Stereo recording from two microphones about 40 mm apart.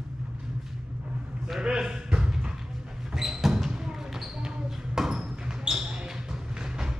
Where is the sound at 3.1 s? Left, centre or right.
Centre.